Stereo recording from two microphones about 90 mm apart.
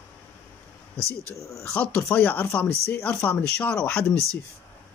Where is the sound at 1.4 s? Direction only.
35° left (ahead or behind).